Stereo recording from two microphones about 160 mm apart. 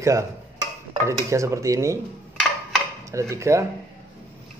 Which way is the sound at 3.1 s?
20° right (ahead or behind).